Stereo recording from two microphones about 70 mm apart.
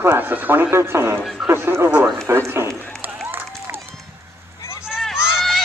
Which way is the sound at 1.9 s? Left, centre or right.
Centre.